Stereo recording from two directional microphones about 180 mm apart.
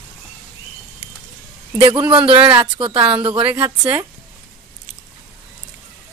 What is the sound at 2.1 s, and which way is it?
Speech, 30° right (ahead or behind).